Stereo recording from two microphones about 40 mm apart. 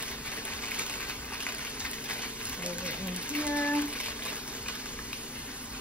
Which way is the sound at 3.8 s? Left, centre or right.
Right.